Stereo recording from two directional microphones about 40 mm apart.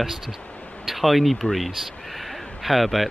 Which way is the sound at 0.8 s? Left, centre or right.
Centre.